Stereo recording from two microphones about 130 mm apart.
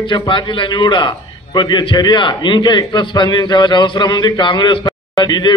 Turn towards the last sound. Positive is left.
turn(degrees=35)  # may be behind; listen again after turning